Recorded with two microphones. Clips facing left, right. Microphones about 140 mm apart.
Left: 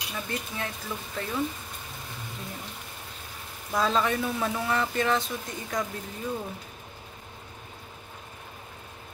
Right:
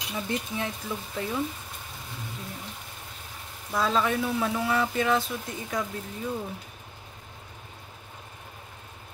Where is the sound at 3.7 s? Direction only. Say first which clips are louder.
Even; 5° right (ahead or behind).